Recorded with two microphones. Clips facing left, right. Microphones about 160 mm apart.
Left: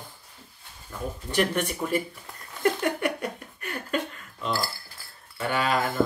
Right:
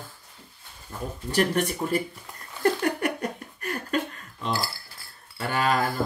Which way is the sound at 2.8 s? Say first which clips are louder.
Right 1 dB; 40° right (ahead or behind).